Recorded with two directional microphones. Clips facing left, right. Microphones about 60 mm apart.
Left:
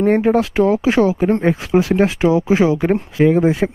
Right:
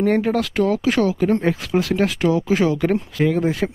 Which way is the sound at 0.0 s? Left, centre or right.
Left.